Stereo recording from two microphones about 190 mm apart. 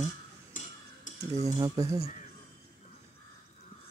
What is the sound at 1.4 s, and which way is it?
Speech, 20° right (ahead or behind).